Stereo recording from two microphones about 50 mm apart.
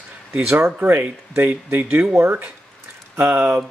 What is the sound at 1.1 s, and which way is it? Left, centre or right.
Speech, right.